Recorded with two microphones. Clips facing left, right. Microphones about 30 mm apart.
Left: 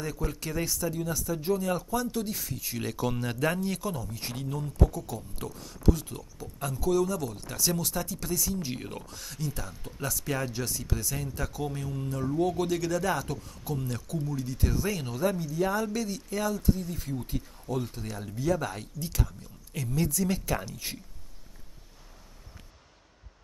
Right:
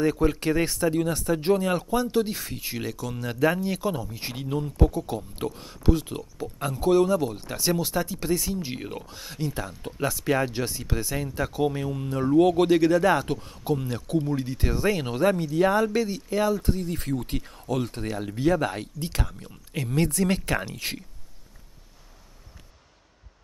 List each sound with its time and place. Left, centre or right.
0.0 s speech: right
1.7 s speech: right
3.2 s speech: centre
3.5 s speech: centre
8.5 s speech: centre
12.4 s speech: right
12.6 s speech: right
14.0 s speech: right
16.6 s speech: right
18.0 s speech: right
19.9 s speech: right
20.7 s speech: right